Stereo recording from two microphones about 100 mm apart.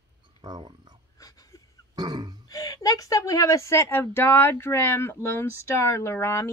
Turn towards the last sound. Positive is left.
turn(degrees=25)  # may be behind; listen again after turning